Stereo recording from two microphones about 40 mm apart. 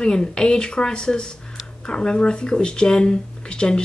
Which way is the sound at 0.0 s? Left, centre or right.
Centre.